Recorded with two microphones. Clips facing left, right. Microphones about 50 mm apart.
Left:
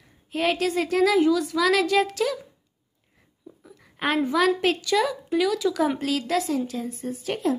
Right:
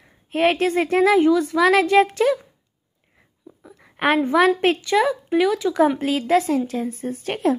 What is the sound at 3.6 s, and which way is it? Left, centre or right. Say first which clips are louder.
A woman's voice: right 6 dB; right.